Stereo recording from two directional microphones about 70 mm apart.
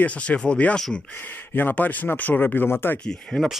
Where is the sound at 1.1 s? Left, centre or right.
Left.